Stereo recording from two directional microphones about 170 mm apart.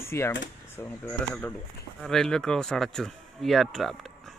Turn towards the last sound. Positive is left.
turn(degrees=0)  # may be behind; listen again after turning